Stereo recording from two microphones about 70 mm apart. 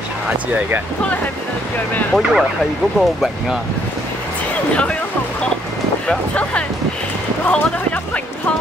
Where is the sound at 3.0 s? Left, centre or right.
Centre.